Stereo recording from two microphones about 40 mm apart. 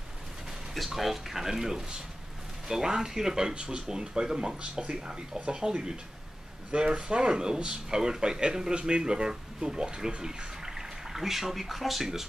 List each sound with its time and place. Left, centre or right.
0.7 s speech: centre